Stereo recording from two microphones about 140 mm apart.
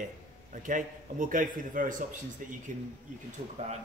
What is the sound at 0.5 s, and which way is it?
A man's voice, 70° right (ahead or behind).